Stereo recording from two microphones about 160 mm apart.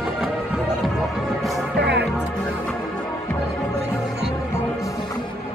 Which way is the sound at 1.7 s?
90° right.